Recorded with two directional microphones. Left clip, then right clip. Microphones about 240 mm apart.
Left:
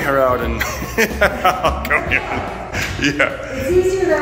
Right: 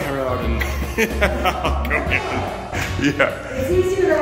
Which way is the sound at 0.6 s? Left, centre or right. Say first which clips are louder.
Left 3 dB; centre.